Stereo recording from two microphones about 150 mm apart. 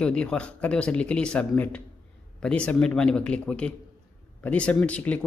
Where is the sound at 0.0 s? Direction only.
5° left (ahead or behind).